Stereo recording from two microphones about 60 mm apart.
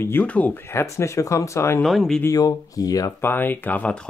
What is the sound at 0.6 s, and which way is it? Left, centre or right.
Speech, left.